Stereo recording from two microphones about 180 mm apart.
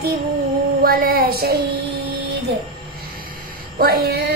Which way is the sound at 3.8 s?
60° right (ahead or behind).